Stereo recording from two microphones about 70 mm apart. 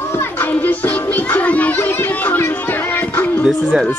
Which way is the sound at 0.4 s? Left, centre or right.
Left.